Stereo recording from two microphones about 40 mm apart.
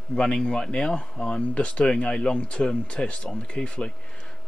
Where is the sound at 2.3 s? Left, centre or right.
Left.